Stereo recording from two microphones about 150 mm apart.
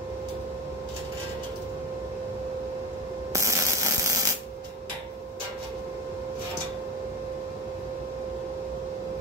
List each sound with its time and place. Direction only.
3.3 s mechanisms: 20° right (ahead or behind)